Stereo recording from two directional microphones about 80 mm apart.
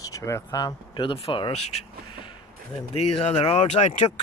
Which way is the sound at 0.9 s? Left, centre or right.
Left.